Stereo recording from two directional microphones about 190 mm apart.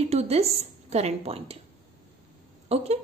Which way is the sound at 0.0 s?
35° right (ahead or behind).